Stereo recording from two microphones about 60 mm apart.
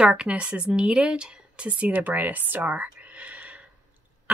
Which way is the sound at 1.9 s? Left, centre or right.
Right.